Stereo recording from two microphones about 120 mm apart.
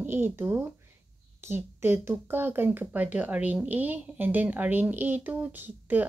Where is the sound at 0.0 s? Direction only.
20° right (ahead or behind).